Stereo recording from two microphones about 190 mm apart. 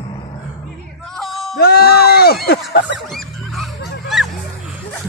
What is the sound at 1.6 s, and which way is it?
Speech, 55° left (ahead or behind).